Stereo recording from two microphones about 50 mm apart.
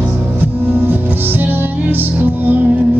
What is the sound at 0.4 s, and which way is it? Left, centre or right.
Music, right.